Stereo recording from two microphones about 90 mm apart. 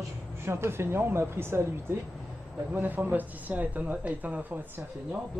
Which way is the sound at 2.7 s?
20° right (ahead or behind).